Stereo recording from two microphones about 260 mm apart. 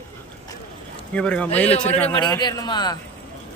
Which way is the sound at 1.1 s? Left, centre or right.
Centre.